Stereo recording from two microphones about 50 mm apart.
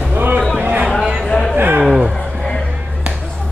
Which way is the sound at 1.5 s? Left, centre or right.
Right.